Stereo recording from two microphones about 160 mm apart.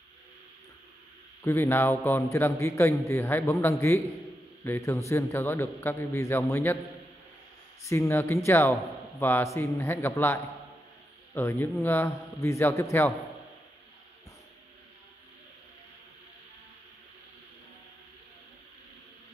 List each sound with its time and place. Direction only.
1.4 s a man's voice: 15° left (ahead or behind)
7.8 s a man's voice: 20° left (ahead or behind)